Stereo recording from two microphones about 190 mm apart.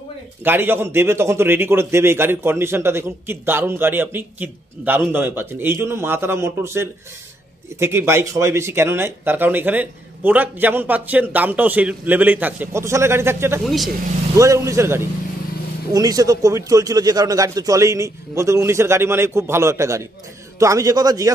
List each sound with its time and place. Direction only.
0.4 s a man's voice: 10° right (ahead or behind)